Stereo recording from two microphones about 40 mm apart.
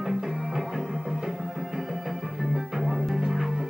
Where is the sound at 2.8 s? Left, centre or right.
Centre.